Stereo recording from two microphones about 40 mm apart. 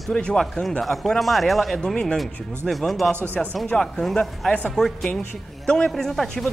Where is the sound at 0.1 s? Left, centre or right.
Left.